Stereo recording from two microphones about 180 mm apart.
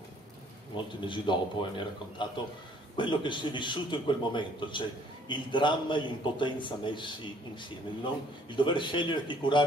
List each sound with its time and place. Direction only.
0.7 s a man's voice: 25° left (ahead or behind)
8.5 s a man's voice: 25° left (ahead or behind)